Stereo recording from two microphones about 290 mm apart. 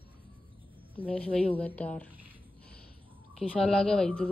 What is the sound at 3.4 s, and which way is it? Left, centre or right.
Speech, centre.